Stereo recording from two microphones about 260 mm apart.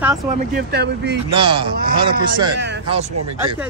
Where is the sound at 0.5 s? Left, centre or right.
Right.